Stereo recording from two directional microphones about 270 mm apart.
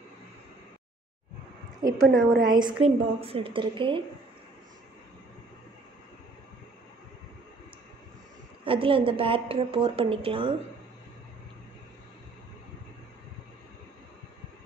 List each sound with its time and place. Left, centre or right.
1.8 s a woman's voice: centre
8.6 s a woman's voice: centre